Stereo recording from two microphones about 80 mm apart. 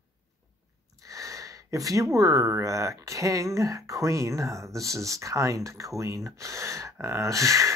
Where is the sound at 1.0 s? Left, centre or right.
Right.